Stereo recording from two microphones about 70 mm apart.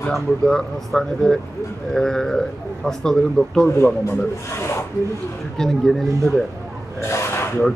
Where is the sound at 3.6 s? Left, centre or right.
Left.